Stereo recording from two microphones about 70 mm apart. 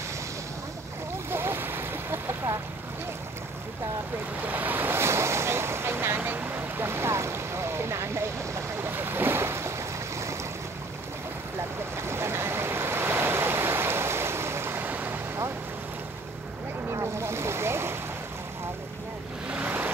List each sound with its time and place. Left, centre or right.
1.3 s boat: right
4.5 s waves: right
12.0 s waves: right
14.8 s boat: right
16.9 s boat: right
19.5 s vehicle: right